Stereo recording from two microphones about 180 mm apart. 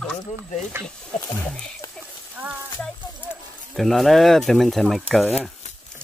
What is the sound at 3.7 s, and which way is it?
Speech, centre (ahead or behind).